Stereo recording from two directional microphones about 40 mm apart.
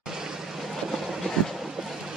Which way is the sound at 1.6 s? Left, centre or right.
Centre.